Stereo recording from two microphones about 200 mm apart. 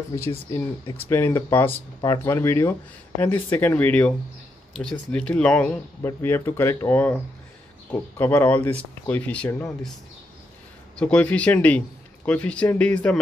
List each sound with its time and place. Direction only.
0.3 s speech: 25° left (ahead or behind)
0.9 s speech: 10° left (ahead or behind)
11.0 s speech: 5° left (ahead or behind)